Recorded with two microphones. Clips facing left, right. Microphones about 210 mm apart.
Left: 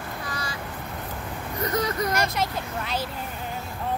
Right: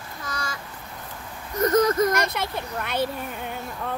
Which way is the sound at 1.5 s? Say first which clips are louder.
Right 7 dB; 45° right (ahead or behind).